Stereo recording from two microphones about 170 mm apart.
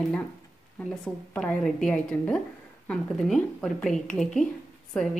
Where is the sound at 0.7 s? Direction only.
5° left (ahead or behind).